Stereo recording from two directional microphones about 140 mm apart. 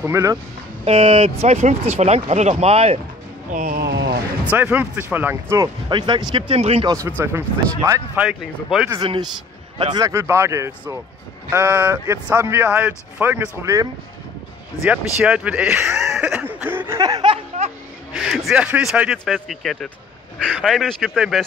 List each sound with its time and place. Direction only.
0.0 s speech: 20° right (ahead or behind)
0.8 s speech: 40° right (ahead or behind)
3.4 s speech: 65° right (ahead or behind)
4.5 s speech: 10° right (ahead or behind)
5.9 s speech: 35° right (ahead or behind)
7.1 s speech: 15° right (ahead or behind)
8.2 s speech: 5° right (ahead or behind)
9.0 s speech: 30° right (ahead or behind)
14.8 s a sound: 10° right (ahead or behind); by 17.3 s 25° right (ahead or behind)
18.1 s speech: 5° right (ahead or behind)